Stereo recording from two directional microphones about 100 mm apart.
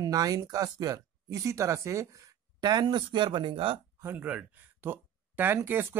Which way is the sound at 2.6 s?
45° right (ahead or behind).